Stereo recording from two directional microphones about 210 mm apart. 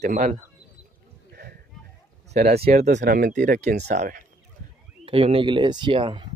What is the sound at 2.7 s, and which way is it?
Speech, 35° right (ahead or behind).